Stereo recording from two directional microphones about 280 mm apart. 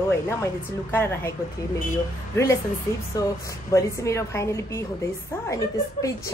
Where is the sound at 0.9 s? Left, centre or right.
Centre.